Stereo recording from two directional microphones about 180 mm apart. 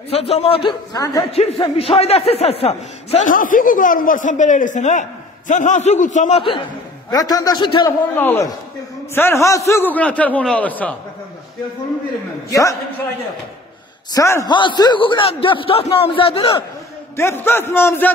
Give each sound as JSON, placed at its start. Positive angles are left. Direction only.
{"t": 0.1, "sound": "a man's voice", "side_deg": 35}
{"t": 1.3, "sound": "a man's voice", "side_deg": 35}
{"t": 3.3, "sound": "a man's voice", "side_deg": 50}
{"t": 7.1, "sound": "a man's voice", "side_deg": 20}
{"t": 8.2, "sound": "a man's voice", "side_deg": 15}
{"t": 12.4, "sound": "a man's voice", "side_deg": 20}
{"t": 14.1, "sound": "a man's voice", "side_deg": 15}
{"t": 17.2, "sound": "a man's voice", "side_deg": 15}